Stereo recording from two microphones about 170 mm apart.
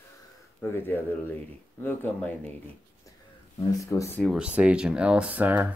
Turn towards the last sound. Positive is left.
turn(degrees=-10)  # may be behind; listen again after turning